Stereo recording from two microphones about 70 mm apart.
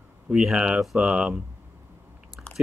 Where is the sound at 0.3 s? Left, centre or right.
Centre.